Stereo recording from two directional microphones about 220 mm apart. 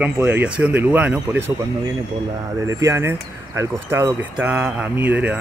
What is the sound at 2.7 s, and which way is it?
Speech, 15° right (ahead or behind).